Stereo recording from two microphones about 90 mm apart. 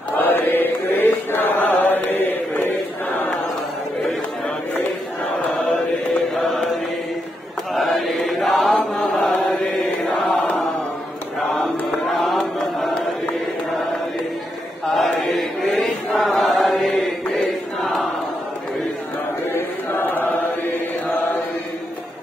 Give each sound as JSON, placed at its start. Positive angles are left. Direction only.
{"t": 0.1, "sound": "chant", "side_deg": 25}
{"t": 6.4, "sound": "mantra", "side_deg": 5}
{"t": 7.7, "sound": "chant", "side_deg": 0}
{"t": 12.1, "sound": "music", "side_deg": 0}
{"t": 12.5, "sound": "chant", "side_deg": 0}
{"t": 15.0, "sound": "chant", "side_deg": 0}
{"t": 19.5, "sound": "chant", "side_deg": 25}